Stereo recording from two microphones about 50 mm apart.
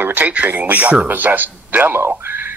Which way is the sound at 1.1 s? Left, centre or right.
Right.